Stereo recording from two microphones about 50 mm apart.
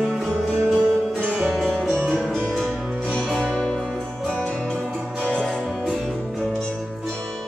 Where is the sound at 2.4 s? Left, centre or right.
Centre.